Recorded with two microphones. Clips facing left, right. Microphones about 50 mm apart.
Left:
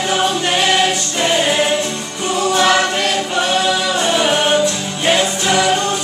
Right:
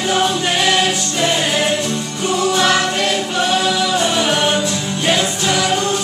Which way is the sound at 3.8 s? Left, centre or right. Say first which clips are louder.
Even; centre.